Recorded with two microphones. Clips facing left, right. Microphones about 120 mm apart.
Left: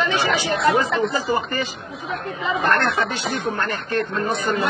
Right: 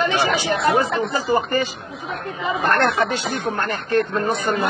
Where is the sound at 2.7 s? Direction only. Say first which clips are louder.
Right 3 dB; 40° right (ahead or behind).